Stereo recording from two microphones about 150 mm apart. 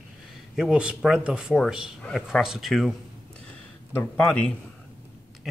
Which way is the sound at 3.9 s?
15° left (ahead or behind).